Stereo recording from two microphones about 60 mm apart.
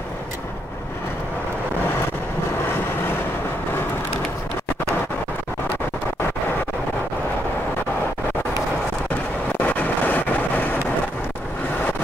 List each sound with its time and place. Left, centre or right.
9.6 s vehicle: left